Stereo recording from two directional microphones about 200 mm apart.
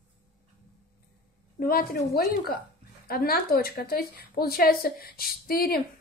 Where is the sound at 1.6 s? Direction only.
45° left (ahead or behind).